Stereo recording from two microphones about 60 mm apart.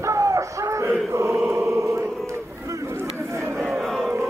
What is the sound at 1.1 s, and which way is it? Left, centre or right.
Mantra, right.